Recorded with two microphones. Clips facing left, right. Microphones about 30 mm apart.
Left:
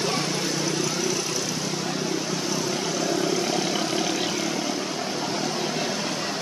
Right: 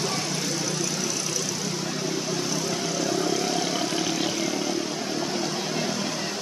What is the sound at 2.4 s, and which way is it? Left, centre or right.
Vehicle, centre.